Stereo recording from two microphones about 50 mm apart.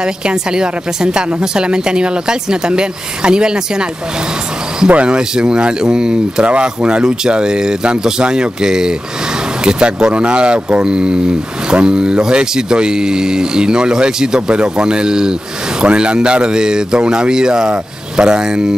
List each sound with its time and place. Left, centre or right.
0.0 s speech: centre
4.8 s speech: right